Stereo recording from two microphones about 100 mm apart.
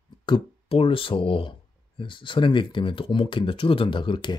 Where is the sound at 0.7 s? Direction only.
65° left (ahead or behind).